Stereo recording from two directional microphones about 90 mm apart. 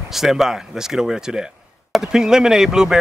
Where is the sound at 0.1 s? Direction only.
5° right (ahead or behind).